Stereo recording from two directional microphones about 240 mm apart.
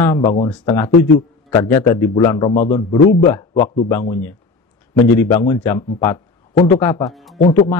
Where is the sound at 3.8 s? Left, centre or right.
Centre.